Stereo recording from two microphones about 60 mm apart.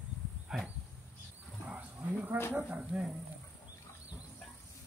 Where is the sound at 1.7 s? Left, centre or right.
Right.